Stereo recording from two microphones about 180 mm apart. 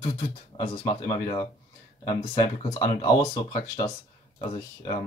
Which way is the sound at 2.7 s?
20° left (ahead or behind).